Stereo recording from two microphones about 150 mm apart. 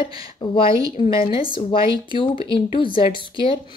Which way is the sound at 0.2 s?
35° left (ahead or behind).